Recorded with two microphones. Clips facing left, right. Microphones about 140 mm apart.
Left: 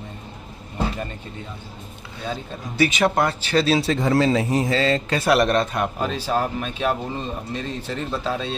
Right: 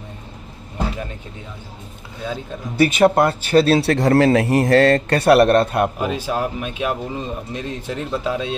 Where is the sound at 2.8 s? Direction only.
50° right (ahead or behind).